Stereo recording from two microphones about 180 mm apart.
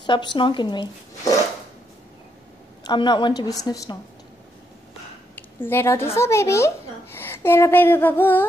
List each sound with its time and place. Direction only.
0.0 s speech: 25° left (ahead or behind)
2.8 s speech: 25° left (ahead or behind)
5.3 s speech: 10° left (ahead or behind)
7.2 s a sound: 10° left (ahead or behind)